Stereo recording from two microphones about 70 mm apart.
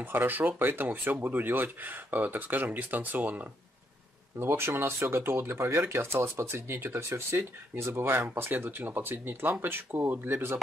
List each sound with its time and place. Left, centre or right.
0.0 s speech: right
4.4 s speech: right